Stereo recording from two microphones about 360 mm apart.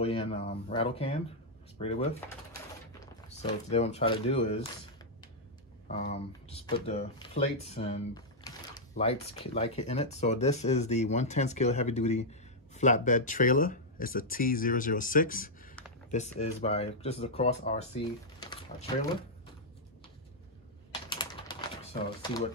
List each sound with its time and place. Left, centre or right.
0.0 s speech: centre
3.7 s speech: centre
5.9 s speech: centre
21.1 s typing: centre